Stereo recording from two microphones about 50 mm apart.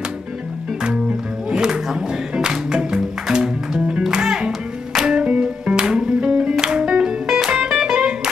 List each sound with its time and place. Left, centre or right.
1.5 s music: centre